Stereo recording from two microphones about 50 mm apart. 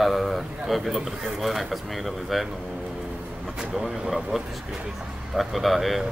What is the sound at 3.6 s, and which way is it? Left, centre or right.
A man's voice, centre.